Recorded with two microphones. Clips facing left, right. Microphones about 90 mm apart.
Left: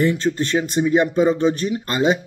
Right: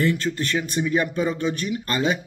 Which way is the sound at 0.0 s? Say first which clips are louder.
Left 4 dB; 20° left (ahead or behind).